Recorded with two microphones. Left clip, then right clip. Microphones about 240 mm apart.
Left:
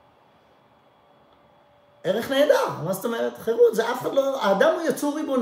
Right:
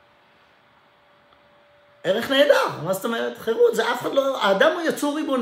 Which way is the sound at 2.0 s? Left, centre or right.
Centre.